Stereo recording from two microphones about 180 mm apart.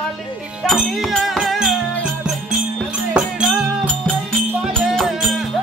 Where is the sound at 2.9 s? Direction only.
5° right (ahead or behind).